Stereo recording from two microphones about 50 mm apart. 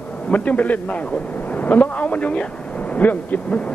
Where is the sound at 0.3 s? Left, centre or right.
Left.